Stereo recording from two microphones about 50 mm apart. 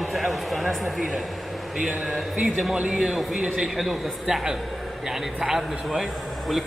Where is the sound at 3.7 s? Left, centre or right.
Centre.